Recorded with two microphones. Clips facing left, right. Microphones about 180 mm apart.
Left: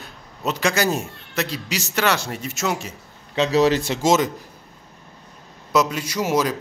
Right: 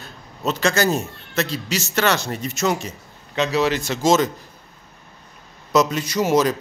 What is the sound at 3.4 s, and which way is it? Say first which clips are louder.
Speech: left 3 dB; 35° left (ahead or behind).